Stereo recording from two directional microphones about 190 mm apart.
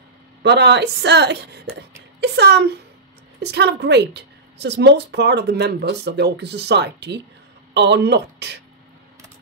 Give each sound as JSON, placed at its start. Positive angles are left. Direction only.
{"t": 0.4, "sound": "a woman's voice", "side_deg": -60}